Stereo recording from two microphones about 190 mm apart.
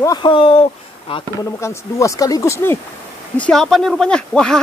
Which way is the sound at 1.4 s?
15° left (ahead or behind).